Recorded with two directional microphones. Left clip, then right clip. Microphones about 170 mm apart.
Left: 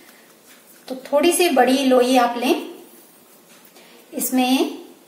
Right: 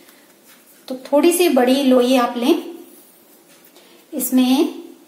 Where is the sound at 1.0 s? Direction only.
30° right (ahead or behind).